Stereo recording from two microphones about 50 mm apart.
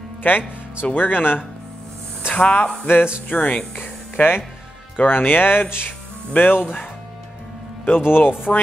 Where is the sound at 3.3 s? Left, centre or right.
Left.